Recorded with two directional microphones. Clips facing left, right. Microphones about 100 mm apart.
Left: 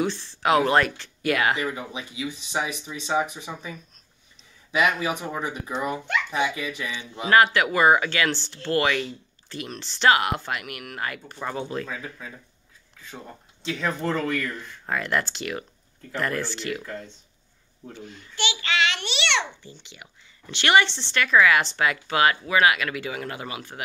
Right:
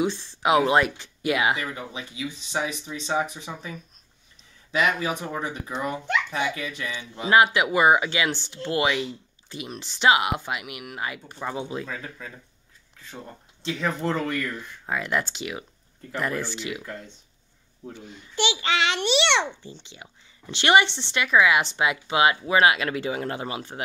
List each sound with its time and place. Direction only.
0.0 s speech: 10° right (ahead or behind)
1.6 s speech: 10° left (ahead or behind)
4.7 s speech: 10° left (ahead or behind)
7.2 s speech: 15° right (ahead or behind)
13.1 s speech: centre (ahead or behind)
19.6 s speech: 25° right (ahead or behind)